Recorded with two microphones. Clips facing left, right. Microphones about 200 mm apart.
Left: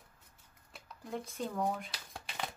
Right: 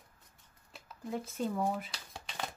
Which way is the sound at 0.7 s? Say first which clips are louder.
Right 3 dB; centre (ahead or behind).